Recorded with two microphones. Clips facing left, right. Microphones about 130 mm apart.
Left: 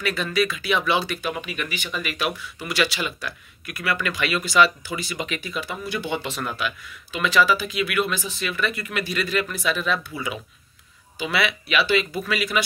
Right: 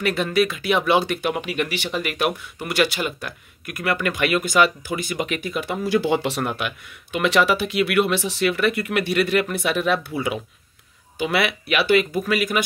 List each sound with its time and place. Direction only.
0.0 s speech: 55° right (ahead or behind); by 1.9 s 75° right (ahead or behind)
2.0 s speech: 60° right (ahead or behind)